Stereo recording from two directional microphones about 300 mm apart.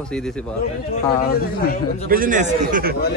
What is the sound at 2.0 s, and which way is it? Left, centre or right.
Speech, right.